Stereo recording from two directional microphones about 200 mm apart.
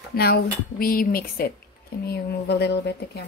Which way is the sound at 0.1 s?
50° left (ahead or behind).